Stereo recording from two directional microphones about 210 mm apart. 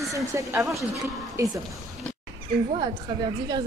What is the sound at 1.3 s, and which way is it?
Speech, 15° right (ahead or behind).